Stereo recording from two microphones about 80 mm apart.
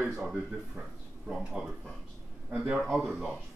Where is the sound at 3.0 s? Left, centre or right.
Centre.